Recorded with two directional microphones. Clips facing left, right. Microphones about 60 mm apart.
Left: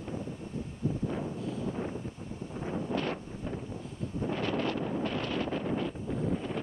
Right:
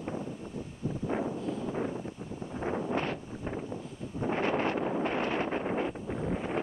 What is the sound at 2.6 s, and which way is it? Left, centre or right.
Wind noise, right.